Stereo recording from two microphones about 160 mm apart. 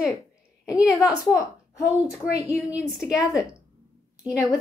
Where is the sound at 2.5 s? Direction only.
10° right (ahead or behind).